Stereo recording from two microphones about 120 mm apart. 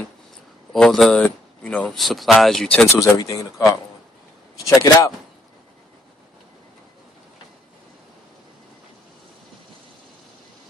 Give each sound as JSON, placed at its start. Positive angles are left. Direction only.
{"t": 0.7, "sound": "a man's voice", "side_deg": 5}
{"t": 2.0, "sound": "speech", "side_deg": 0}
{"t": 2.9, "sound": "speech", "side_deg": 30}